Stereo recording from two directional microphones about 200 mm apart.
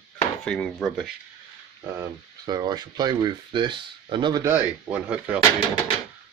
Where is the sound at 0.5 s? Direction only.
5° left (ahead or behind).